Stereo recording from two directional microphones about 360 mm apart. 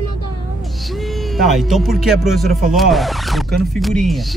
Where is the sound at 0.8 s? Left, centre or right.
Centre.